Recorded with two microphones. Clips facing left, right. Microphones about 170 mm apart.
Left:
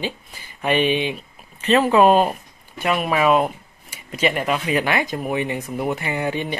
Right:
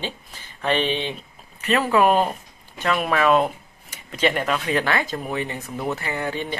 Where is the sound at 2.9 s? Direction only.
5° left (ahead or behind).